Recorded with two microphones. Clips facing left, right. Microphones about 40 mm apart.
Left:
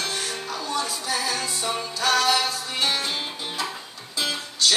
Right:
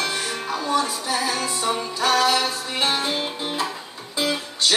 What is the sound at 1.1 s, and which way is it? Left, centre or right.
Music, centre.